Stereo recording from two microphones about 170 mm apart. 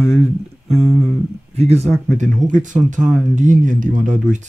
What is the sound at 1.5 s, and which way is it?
Speech, 40° right (ahead or behind).